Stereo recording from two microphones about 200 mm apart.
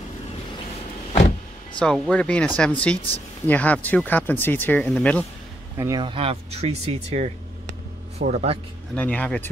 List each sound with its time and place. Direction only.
1.8 s speech: 5° left (ahead or behind)
5.8 s speech: 20° right (ahead or behind)
8.9 s speech: 5° left (ahead or behind)